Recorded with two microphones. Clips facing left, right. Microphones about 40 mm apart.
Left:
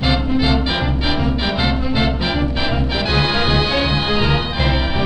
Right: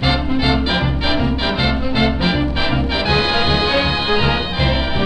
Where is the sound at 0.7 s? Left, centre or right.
Centre.